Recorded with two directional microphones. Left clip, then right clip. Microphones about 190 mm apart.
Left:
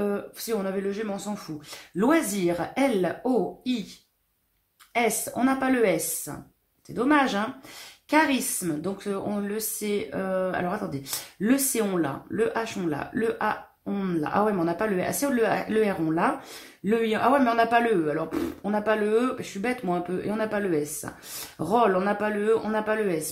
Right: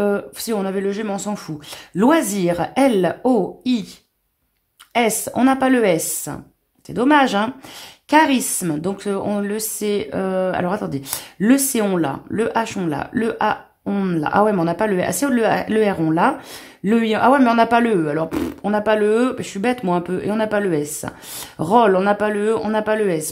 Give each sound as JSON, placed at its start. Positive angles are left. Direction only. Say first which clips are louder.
{"t": 0.0, "sound": "speech", "louder": "right 9 dB", "side_deg": -45}
{"t": 4.9, "sound": "a woman's voice", "louder": "right 7 dB", "side_deg": -45}